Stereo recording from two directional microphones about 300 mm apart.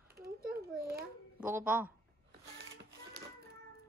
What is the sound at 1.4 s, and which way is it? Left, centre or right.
Speech, centre.